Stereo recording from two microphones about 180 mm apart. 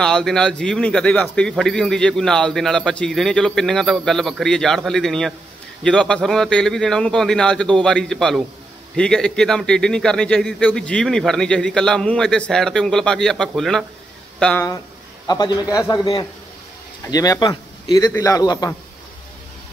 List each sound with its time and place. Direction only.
0.0 s speech: 5° left (ahead or behind)
15.2 s a man's voice: 20° left (ahead or behind)